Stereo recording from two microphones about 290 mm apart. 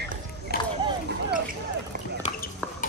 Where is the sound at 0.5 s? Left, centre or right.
Left.